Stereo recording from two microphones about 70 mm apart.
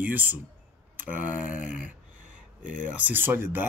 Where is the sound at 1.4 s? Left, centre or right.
Centre.